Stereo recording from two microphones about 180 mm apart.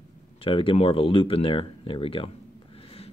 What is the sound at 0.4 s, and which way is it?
Speech, 30° left (ahead or behind).